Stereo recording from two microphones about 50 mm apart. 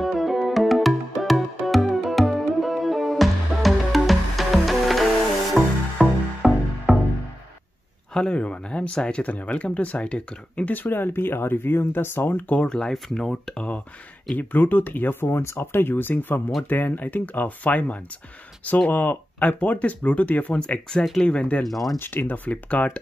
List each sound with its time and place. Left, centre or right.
0.0 s music: centre
8.1 s speech: centre
10.7 s speech: left
12.5 s speech: centre
12.9 s speech: centre
13.6 s speech: left
14.3 s speech: left
20.6 s speech: centre
21.6 s speech: centre
21.9 s speech: left
22.5 s speech: left